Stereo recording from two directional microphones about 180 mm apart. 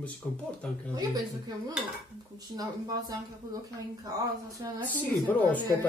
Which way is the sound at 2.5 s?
20° right (ahead or behind).